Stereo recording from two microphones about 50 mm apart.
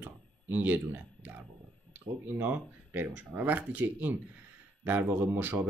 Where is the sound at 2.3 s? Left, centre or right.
Right.